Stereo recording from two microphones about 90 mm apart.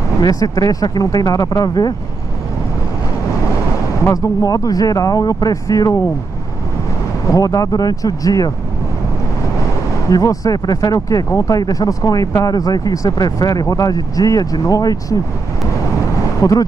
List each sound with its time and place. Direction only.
0.2 s speech: 45° left (ahead or behind)
4.0 s speech: 35° left (ahead or behind)
7.2 s speech: 40° left (ahead or behind)
10.0 s speech: 40° left (ahead or behind)
16.3 s speech: 40° left (ahead or behind)